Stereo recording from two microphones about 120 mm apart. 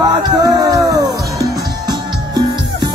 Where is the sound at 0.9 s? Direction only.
30° right (ahead or behind).